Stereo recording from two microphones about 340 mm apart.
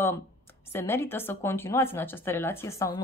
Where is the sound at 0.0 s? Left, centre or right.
Centre.